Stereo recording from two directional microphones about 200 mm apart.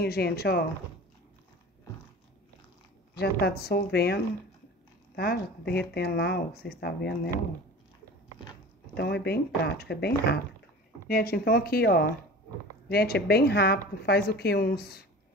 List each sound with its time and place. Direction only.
0.0 s speech: 50° left (ahead or behind)
3.2 s speech: 55° left (ahead or behind)
8.9 s speech: 55° left (ahead or behind)